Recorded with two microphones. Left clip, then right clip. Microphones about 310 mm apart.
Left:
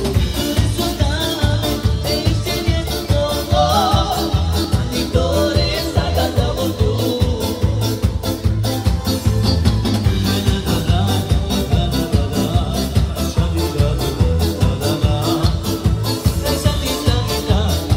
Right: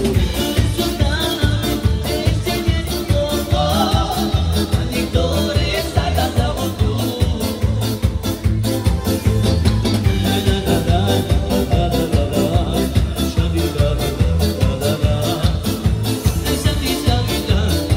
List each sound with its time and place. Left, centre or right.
3.3 s music: left